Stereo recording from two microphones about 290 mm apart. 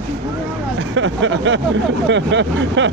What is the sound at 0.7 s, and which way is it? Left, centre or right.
Speech, right.